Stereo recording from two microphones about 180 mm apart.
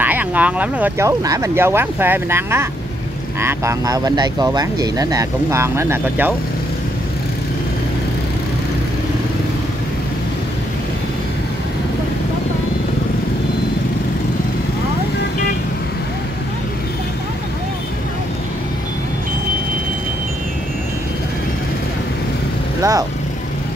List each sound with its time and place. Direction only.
0.0 s speech: 10° right (ahead or behind)
22.8 s vehicle: 20° right (ahead or behind)